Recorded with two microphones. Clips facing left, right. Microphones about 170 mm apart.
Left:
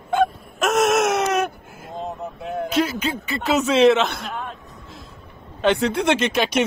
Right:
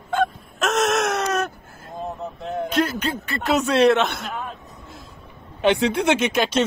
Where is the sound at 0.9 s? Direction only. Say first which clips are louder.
Left 3 dB; 15° left (ahead or behind).